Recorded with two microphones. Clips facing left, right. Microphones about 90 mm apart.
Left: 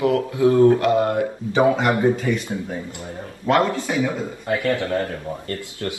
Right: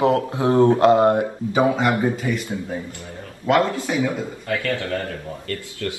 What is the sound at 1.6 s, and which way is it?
Speech, 20° left (ahead or behind).